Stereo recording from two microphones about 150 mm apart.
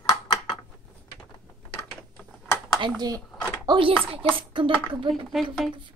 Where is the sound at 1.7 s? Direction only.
15° left (ahead or behind).